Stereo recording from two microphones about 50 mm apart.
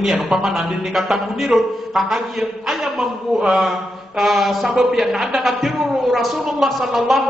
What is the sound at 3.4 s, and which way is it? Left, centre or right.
Speech, centre.